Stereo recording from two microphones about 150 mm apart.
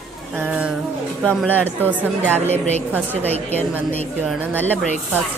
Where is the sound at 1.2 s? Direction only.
5° left (ahead or behind).